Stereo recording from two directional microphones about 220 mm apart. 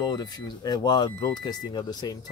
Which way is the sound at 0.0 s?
20° left (ahead or behind).